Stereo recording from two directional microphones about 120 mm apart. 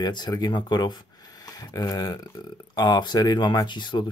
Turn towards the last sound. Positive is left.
turn(degrees=40)  # may be behind; listen again after turning